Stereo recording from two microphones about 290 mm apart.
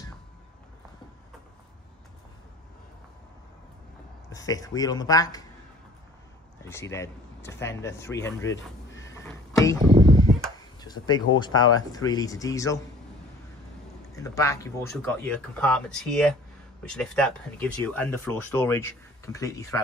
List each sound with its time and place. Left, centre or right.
4.3 s speech: centre
6.6 s speech: centre
9.0 s a sound: centre
9.8 s a sound: centre
10.8 s speech: centre
14.1 s speech: centre